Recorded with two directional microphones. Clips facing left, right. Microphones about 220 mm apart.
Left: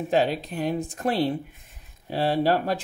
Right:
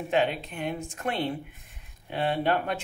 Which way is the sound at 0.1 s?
35° left (ahead or behind).